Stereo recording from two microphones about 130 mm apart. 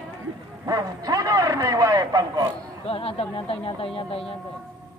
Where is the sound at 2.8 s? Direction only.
45° left (ahead or behind).